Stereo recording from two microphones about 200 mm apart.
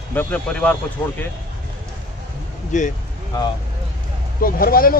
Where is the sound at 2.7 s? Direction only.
40° left (ahead or behind).